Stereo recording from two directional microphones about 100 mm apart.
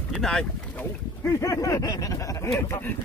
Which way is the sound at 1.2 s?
30° left (ahead or behind).